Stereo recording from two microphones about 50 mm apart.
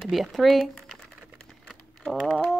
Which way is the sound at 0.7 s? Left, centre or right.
Centre.